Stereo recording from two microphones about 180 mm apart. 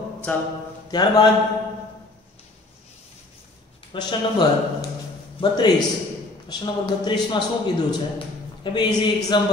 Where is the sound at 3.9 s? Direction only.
25° left (ahead or behind).